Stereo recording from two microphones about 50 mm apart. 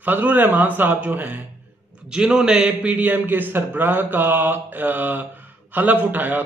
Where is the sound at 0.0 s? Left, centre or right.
Right.